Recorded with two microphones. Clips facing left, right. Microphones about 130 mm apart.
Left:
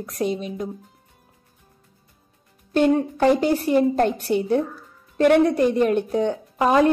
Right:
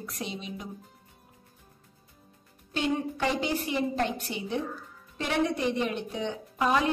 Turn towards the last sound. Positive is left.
turn(degrees=45)  # may be behind; listen again after turning